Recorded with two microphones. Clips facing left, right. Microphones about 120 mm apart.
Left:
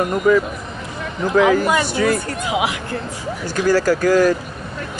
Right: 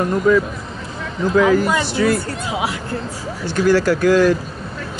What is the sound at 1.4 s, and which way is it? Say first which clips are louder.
Speech: left 1 dB; 65° left (ahead or behind).